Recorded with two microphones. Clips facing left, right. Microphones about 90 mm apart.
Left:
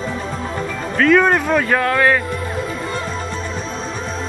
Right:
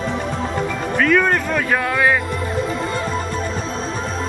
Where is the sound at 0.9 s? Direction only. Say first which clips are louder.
Left 3 dB; centre (ahead or behind).